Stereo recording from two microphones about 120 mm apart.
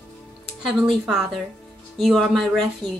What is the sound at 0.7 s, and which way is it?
A woman's voice, centre (ahead or behind).